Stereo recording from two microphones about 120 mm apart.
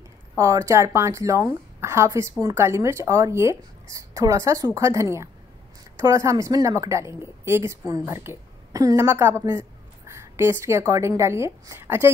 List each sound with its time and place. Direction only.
0.4 s a woman's voice: 25° right (ahead or behind)